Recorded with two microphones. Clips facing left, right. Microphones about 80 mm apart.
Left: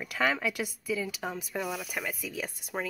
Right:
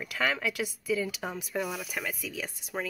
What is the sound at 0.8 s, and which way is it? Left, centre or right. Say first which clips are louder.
Speech: right 3 dB; centre.